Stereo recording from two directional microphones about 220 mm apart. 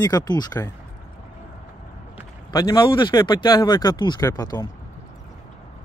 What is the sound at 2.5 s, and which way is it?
Speech, 15° left (ahead or behind).